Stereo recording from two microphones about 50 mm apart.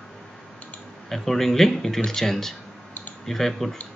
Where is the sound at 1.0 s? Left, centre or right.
Centre.